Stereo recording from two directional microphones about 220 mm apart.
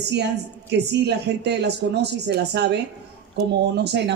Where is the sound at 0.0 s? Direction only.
50° right (ahead or behind).